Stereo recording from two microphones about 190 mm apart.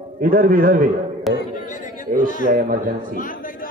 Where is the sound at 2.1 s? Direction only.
45° right (ahead or behind).